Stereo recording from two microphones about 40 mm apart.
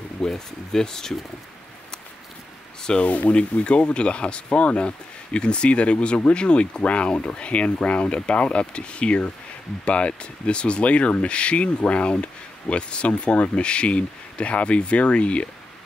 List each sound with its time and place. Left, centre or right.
0.2 s speech: centre
2.8 s speech: left
3.1 s speech: left